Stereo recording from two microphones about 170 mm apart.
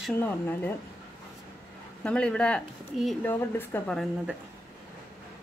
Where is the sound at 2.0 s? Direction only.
5° left (ahead or behind).